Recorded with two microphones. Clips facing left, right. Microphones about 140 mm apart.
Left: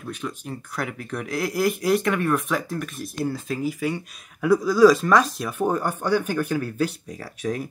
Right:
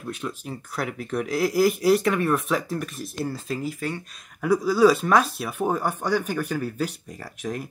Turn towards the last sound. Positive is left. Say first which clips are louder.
# left 3 dB
turn(degrees=0)  # may be behind; listen again after turning